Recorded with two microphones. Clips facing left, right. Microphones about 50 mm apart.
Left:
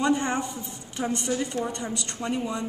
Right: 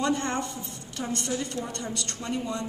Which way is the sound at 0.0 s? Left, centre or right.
Centre.